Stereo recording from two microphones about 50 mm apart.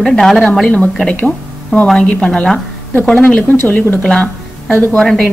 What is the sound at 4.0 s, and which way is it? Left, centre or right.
Speech, left.